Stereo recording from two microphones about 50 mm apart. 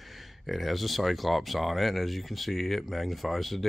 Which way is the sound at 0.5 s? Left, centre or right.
Centre.